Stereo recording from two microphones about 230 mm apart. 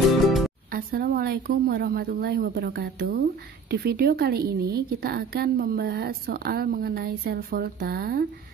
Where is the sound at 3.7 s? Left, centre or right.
Right.